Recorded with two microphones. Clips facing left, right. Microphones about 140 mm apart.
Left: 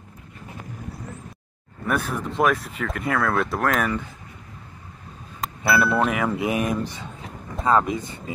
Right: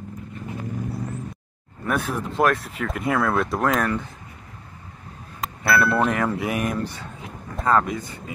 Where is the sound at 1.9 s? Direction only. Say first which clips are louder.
Even; centre (ahead or behind).